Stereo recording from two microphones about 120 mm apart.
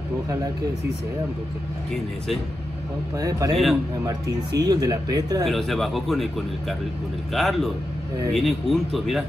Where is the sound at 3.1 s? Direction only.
30° right (ahead or behind).